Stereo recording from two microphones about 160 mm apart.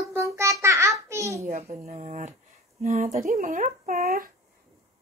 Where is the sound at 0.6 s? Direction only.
20° right (ahead or behind).